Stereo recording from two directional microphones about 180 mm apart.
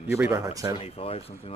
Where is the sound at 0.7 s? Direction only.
30° left (ahead or behind).